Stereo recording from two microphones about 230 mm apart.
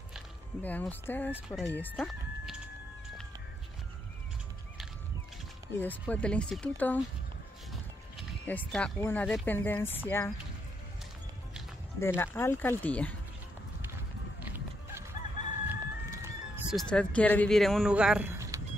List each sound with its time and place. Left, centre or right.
0.1 s speech: centre
5.7 s speech: centre
8.2 s speech: centre
12.0 s speech: centre
14.4 s a sound: centre
15.6 s chicken: centre
16.9 s speech: centre